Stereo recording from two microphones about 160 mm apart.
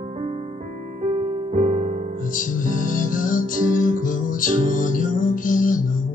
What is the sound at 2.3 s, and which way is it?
Music, 55° left (ahead or behind).